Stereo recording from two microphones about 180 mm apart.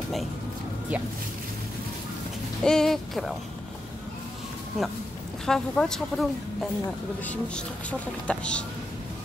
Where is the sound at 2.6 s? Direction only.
5° left (ahead or behind).